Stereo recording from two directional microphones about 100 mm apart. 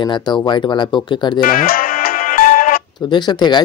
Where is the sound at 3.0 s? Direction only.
45° left (ahead or behind).